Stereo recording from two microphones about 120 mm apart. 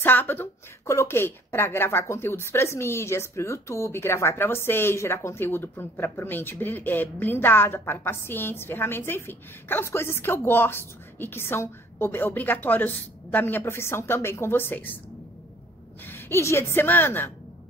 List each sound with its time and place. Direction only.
0.0 s a woman's voice: 15° left (ahead or behind)
16.1 s a woman's voice: 20° left (ahead or behind)